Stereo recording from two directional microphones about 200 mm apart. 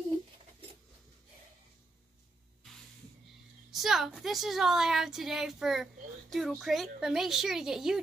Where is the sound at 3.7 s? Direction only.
Centre (ahead or behind).